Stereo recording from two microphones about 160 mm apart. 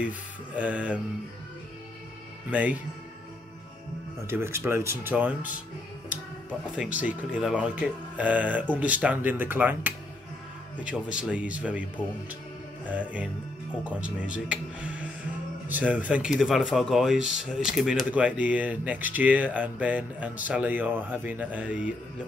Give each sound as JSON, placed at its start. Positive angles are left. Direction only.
{"t": 0.6, "sound": "speech", "side_deg": -10}
{"t": 2.5, "sound": "speech", "side_deg": -10}
{"t": 4.3, "sound": "speech", "side_deg": -15}
{"t": 7.0, "sound": "speech", "side_deg": -10}
{"t": 13.8, "sound": "speech", "side_deg": -10}